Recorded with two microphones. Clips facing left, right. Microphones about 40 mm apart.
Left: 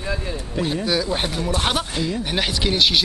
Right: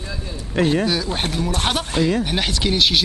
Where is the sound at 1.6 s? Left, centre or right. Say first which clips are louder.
Right 3 dB; centre.